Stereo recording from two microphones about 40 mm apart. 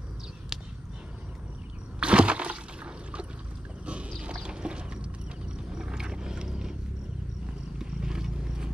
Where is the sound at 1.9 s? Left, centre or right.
Right.